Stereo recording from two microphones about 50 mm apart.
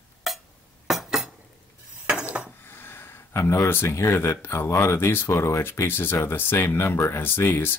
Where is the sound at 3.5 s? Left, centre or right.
Left.